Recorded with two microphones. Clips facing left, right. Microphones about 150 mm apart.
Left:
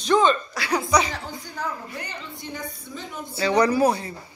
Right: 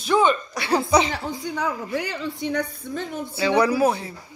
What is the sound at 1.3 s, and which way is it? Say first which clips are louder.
A woman's voice: right 5 dB; 75° right (ahead or behind).